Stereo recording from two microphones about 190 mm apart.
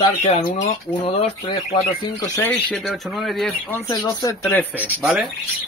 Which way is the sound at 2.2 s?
15° left (ahead or behind).